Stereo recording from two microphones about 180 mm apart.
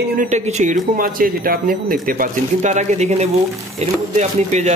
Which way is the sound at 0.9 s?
50° right (ahead or behind).